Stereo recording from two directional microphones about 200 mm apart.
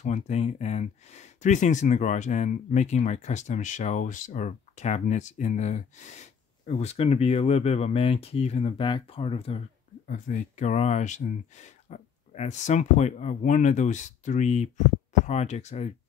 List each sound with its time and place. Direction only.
0.0 s speech: 35° left (ahead or behind)
10.0 s speech: 40° left (ahead or behind)